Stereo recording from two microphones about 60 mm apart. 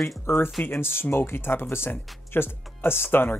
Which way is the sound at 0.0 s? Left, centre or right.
Left.